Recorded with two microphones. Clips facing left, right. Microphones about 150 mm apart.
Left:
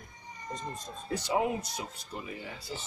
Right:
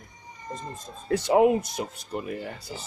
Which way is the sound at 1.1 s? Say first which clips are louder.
Right 10 dB; 60° right (ahead or behind).